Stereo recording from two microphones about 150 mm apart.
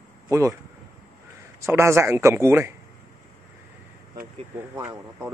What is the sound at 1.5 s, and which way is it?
Speech, 20° right (ahead or behind).